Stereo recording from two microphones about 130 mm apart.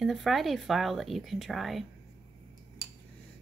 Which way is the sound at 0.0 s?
Centre (ahead or behind).